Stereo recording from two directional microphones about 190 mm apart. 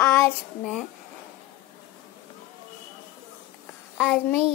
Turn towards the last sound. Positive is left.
turn(degrees=5)  # may be behind; listen again after turning